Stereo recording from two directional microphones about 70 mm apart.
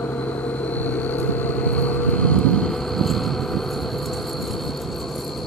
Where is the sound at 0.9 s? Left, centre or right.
Left; by 3.6 s centre.